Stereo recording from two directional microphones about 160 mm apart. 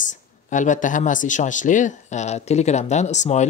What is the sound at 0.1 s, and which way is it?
Speech, 50° left (ahead or behind).